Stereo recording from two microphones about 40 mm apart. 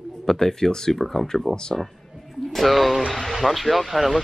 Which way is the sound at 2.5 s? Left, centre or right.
Centre.